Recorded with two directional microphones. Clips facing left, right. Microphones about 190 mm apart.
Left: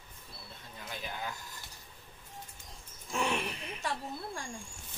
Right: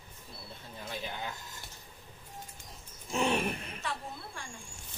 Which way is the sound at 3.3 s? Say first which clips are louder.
Right 4 dB; 50° right (ahead or behind).